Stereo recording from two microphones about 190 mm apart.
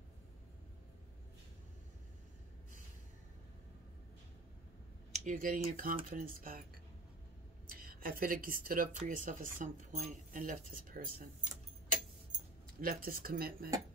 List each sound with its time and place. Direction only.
5.1 s speech: 45° right (ahead or behind)
7.6 s speech: 50° right (ahead or behind)
12.8 s speech: 50° right (ahead or behind)